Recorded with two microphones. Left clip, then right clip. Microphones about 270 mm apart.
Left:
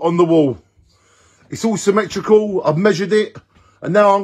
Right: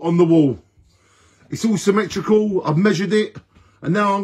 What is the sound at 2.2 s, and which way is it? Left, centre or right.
Speech, left.